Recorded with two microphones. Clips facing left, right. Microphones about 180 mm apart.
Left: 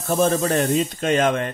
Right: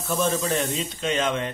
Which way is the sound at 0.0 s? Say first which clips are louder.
Left 5 dB; 45° left (ahead or behind).